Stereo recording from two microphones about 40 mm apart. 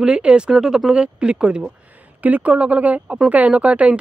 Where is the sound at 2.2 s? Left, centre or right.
Right.